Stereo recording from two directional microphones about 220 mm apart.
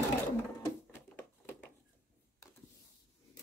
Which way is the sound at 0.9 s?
10° left (ahead or behind).